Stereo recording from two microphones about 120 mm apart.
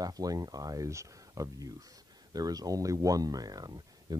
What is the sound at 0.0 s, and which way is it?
Speech, 30° right (ahead or behind).